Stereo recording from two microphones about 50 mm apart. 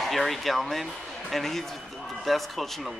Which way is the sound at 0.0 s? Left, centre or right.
Centre.